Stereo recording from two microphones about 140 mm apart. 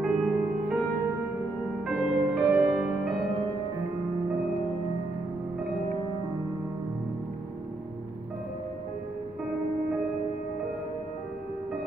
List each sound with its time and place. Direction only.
0.0 s music: 5° right (ahead or behind)
1.9 s music: 5° right (ahead or behind)